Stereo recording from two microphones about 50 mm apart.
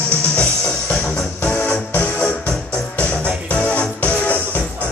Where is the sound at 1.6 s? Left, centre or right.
Left.